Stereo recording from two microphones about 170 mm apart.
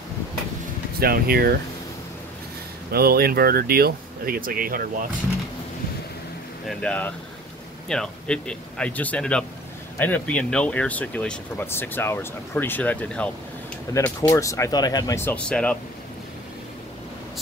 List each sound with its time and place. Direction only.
0.9 s speech: 60° right (ahead or behind)
2.9 s speech: 65° right (ahead or behind)
6.8 s speech: 5° left (ahead or behind)